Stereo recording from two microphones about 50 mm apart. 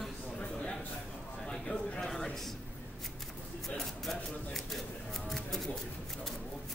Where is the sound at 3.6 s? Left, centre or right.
Centre.